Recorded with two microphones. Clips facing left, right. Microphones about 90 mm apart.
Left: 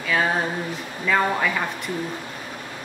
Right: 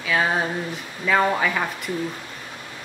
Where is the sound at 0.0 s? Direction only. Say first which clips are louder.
Even; centre (ahead or behind).